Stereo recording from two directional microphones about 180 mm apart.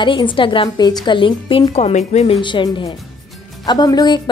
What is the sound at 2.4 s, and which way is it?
A woman's voice, 25° left (ahead or behind).